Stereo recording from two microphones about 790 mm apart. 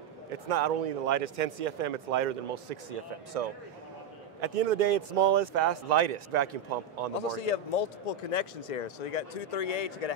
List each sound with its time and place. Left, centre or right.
0.5 s speech: right
4.4 s speech: right
7.2 s speech: left